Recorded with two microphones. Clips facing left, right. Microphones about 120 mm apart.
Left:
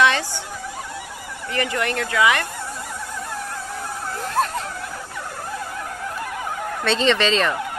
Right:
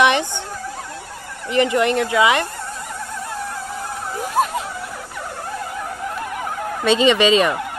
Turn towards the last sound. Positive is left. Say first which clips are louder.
# right 4 dB
turn(degrees=-10)  # may be behind; listen again after turning